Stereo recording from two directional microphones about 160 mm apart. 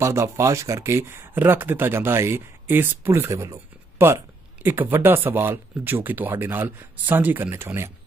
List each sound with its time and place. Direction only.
0.0 s speech: 15° right (ahead or behind)